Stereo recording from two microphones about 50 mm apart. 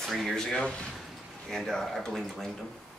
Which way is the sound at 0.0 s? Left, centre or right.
Centre.